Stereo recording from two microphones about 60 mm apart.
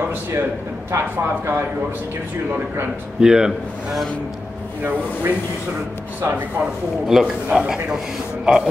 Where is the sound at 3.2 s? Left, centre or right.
Centre.